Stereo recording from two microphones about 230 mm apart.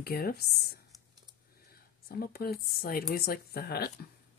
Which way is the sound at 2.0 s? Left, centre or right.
Left.